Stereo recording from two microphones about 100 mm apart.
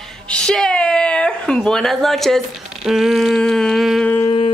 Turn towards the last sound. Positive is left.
turn(degrees=75)  # may be behind; listen again after turning